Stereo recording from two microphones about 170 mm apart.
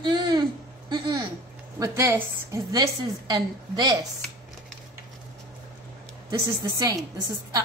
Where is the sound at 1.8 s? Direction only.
15° right (ahead or behind).